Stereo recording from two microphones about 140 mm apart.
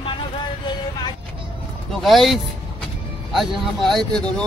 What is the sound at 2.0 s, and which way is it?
Speech, centre (ahead or behind).